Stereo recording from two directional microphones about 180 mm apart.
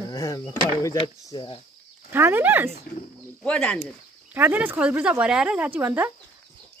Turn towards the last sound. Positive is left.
turn(degrees=-10)  # may be behind; listen again after turning